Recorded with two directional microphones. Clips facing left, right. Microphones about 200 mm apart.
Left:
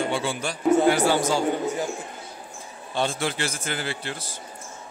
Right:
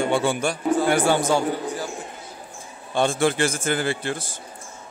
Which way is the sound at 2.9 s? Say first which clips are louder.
Right 6 dB; 50° right (ahead or behind).